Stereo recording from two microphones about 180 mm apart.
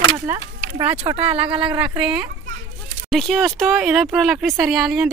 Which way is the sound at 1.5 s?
30° right (ahead or behind).